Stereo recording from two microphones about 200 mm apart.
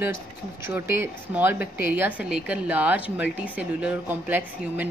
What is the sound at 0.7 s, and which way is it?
A woman's voice, 10° right (ahead or behind).